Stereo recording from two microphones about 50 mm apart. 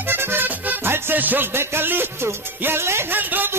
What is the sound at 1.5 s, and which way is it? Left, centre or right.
Music, right.